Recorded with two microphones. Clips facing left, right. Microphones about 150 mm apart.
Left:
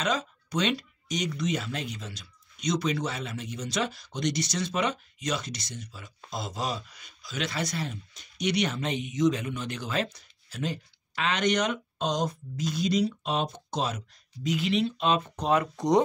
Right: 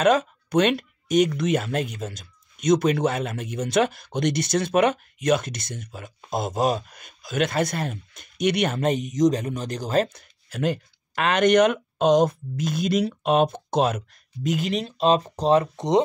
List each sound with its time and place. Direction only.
0.0 s speech: 55° right (ahead or behind); by 10.0 s 40° right (ahead or behind)
10.1 s speech: 55° right (ahead or behind); by 16.0 s 25° right (ahead or behind)